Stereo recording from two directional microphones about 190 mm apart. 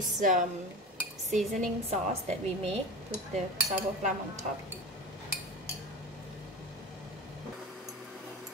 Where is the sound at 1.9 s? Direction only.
35° right (ahead or behind).